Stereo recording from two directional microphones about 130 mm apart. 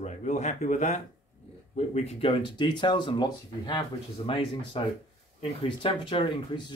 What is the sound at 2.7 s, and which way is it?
Speech, 35° left (ahead or behind).